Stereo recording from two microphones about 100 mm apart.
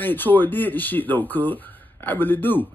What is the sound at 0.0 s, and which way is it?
Speech, 20° left (ahead or behind).